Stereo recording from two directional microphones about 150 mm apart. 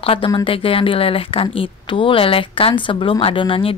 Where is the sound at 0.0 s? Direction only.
40° left (ahead or behind).